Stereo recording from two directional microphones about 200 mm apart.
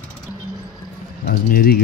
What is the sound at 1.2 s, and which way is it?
Speech, 50° left (ahead or behind).